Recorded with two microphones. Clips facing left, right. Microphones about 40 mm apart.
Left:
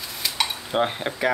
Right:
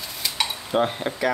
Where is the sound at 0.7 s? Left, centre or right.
Centre.